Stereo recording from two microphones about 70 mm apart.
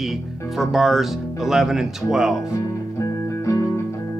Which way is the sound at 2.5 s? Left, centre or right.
Left.